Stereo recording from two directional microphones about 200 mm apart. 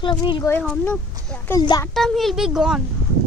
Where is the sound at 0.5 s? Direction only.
5° left (ahead or behind).